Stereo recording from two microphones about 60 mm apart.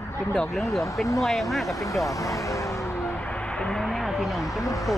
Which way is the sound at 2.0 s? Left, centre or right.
Left.